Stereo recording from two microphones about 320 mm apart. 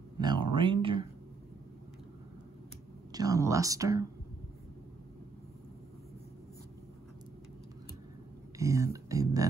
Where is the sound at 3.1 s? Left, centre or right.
Centre.